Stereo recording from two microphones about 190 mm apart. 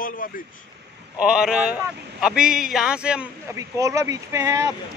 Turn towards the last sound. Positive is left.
turn(degrees=-15)  # may be behind; listen again after turning